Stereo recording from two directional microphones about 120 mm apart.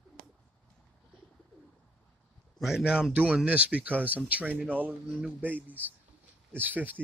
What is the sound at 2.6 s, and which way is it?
Speech, 5° right (ahead or behind).